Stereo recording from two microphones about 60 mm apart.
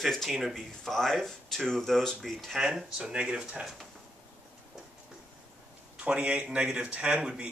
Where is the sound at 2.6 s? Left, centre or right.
Centre.